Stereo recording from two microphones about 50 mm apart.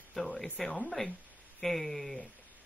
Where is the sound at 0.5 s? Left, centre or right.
Centre.